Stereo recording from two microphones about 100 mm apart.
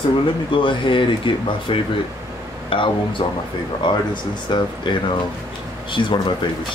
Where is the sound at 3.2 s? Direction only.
55° left (ahead or behind).